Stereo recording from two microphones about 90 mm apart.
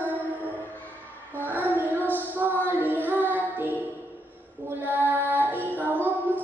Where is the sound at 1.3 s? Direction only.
20° right (ahead or behind).